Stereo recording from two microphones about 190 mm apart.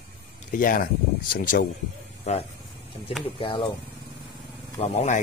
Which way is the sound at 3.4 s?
25° left (ahead or behind).